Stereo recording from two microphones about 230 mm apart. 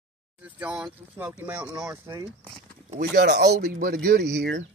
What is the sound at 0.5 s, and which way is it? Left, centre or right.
Speech, centre.